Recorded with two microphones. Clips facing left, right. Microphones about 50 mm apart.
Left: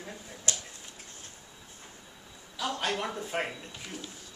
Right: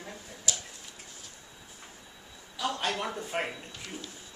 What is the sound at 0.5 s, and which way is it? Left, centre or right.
Tick-tock, left.